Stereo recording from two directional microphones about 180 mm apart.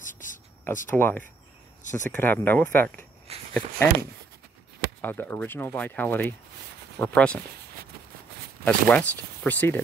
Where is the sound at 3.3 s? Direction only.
35° right (ahead or behind).